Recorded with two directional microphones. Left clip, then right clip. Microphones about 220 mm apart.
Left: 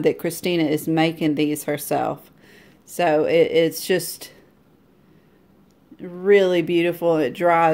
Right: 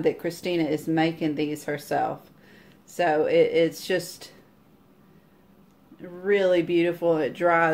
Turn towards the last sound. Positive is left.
turn(degrees=40)  # may be behind; listen again after turning